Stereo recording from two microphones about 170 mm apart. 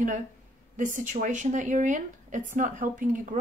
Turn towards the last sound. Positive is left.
turn(degrees=-50)  # may be behind; listen again after turning